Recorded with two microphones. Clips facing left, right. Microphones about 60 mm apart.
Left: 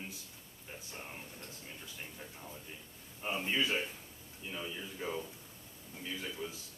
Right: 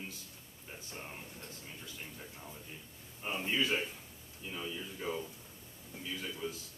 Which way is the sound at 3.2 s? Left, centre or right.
Centre.